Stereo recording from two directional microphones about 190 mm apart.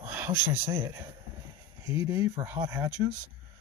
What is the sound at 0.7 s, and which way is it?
Speech, 15° right (ahead or behind).